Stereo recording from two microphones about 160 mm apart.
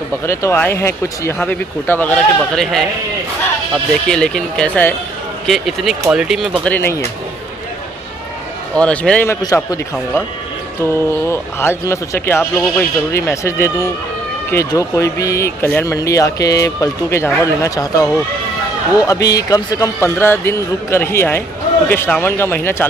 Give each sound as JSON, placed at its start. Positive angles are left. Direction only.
{"t": 0.3, "sound": "speech", "side_deg": 15}
{"t": 6.6, "sound": "speech", "side_deg": 10}
{"t": 8.7, "sound": "speech", "side_deg": 5}
{"t": 9.4, "sound": "speech", "side_deg": 25}
{"t": 10.8, "sound": "speech", "side_deg": 15}